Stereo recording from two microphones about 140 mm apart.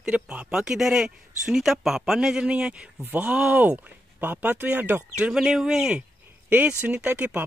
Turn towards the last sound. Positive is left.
turn(degrees=-10)  # may be behind; listen again after turning